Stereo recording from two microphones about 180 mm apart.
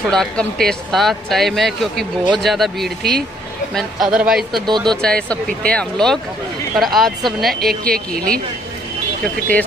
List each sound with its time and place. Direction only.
0.1 s speech: 5° left (ahead or behind)
7.9 s speech: 55° right (ahead or behind)
9.2 s speech: 10° left (ahead or behind)